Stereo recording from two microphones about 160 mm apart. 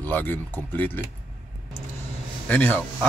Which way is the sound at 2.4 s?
10° left (ahead or behind).